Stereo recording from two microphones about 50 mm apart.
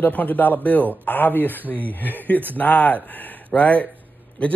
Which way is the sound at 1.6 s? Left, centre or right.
Right.